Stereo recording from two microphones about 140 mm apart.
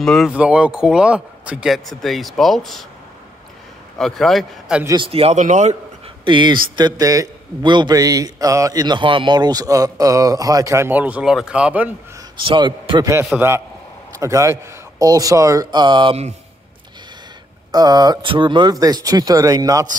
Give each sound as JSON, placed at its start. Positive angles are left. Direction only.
{"t": 0.0, "sound": "speech", "side_deg": 5}
{"t": 0.3, "sound": "speech", "side_deg": -10}
{"t": 4.0, "sound": "speech", "side_deg": 0}
{"t": 4.8, "sound": "a man's voice", "side_deg": -35}
{"t": 6.2, "sound": "a man's voice", "side_deg": -35}
{"t": 6.8, "sound": "a man's voice", "side_deg": -25}
{"t": 12.4, "sound": "a man's voice", "side_deg": -35}
{"t": 13.3, "sound": "speech", "side_deg": -5}
{"t": 14.2, "sound": "a man's voice", "side_deg": -20}
{"t": 17.6, "sound": "a man's voice", "side_deg": -30}